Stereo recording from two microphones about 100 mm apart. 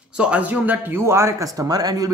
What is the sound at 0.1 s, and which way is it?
Speech, 10° right (ahead or behind).